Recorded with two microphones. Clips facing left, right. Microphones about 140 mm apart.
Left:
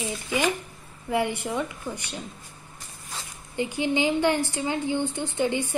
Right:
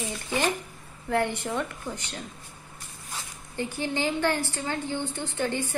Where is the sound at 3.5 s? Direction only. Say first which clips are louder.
Left 4 dB; 15° left (ahead or behind).